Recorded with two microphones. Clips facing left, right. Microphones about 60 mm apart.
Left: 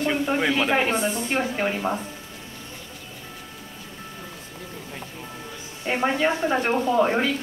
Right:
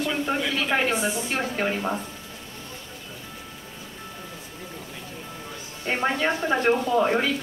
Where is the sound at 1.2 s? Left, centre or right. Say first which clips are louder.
Left 2 dB; centre.